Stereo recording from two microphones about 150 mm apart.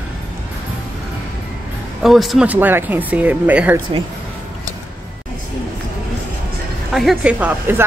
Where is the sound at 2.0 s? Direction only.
Centre (ahead or behind).